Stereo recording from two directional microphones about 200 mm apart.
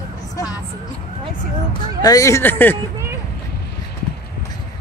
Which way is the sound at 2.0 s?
15° left (ahead or behind).